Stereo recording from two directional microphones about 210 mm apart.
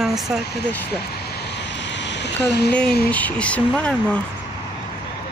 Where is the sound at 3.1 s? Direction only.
5° left (ahead or behind).